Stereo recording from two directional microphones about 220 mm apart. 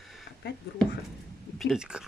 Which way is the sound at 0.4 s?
50° left (ahead or behind).